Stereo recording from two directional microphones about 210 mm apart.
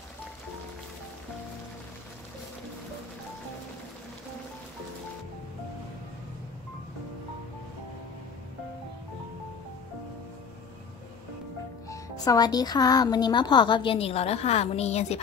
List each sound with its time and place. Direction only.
11.9 s speech: 15° left (ahead or behind)